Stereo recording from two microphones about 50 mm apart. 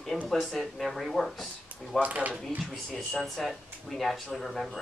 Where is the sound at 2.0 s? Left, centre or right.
Right.